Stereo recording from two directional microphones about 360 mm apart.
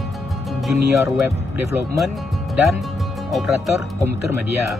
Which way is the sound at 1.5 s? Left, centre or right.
Centre.